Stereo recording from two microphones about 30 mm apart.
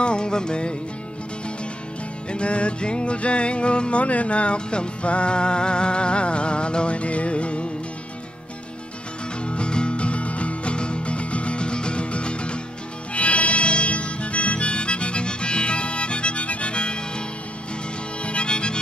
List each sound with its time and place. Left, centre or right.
0.0 s music: left
2.3 s music: left
4.0 s music: left
9.4 s music: left
13.1 s harmonica: left
18.2 s music: left